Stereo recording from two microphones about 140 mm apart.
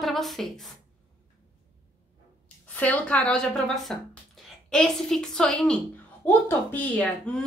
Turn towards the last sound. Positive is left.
turn(degrees=10)  # may be behind; listen again after turning